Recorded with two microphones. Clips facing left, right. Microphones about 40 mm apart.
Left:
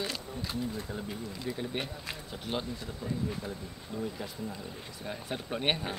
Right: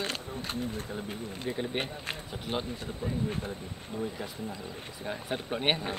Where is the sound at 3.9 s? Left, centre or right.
Centre.